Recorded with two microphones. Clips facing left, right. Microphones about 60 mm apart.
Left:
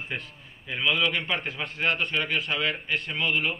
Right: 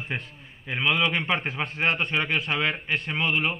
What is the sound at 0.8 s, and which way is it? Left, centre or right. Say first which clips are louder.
Speech: right 1 dB; centre.